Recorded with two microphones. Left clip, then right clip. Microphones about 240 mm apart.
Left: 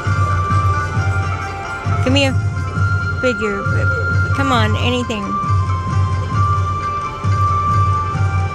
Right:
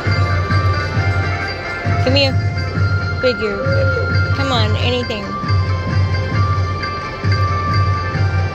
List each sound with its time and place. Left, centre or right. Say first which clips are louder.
2.0 s speech: right 1 dB; left